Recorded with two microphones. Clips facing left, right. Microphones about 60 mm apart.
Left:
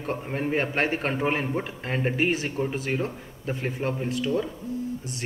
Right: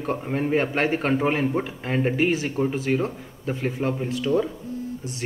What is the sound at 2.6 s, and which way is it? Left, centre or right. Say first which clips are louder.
Speech: right 4 dB; centre.